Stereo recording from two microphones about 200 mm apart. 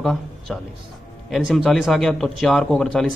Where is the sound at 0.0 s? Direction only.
Centre (ahead or behind).